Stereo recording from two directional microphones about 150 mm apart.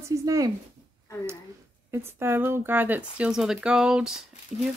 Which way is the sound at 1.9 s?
15° right (ahead or behind).